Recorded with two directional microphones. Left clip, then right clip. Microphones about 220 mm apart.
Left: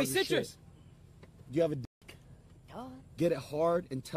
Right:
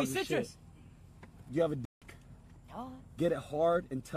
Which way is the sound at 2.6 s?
45° left (ahead or behind).